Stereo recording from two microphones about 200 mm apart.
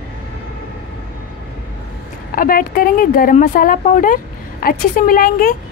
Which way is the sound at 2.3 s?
45° left (ahead or behind).